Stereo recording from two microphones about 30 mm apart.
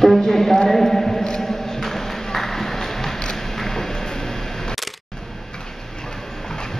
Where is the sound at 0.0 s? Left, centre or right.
Centre.